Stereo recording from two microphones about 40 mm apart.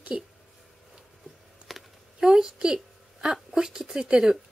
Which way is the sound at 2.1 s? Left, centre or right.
Centre.